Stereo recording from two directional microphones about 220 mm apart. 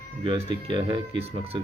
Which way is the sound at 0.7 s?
20° right (ahead or behind).